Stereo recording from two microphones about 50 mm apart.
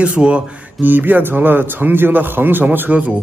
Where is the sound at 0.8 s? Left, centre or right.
Right.